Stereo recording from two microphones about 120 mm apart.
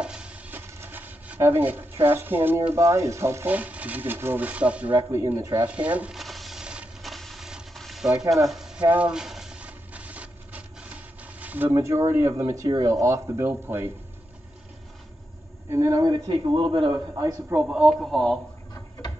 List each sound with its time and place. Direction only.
0.0 s speech: 10° right (ahead or behind)
5.1 s speech: 25° right (ahead or behind)
5.7 s speech: 10° right (ahead or behind)
6.1 s a sound: centre (ahead or behind)
8.5 s frying: 5° right (ahead or behind)
8.8 s a sound: 10° right (ahead or behind)
12.1 s speech: 25° right (ahead or behind)
15.7 s a man's voice: 25° right (ahead or behind); by 16.9 s 45° right (ahead or behind)
16.9 s speech: 30° right (ahead or behind)
17.6 s speech: 10° right (ahead or behind)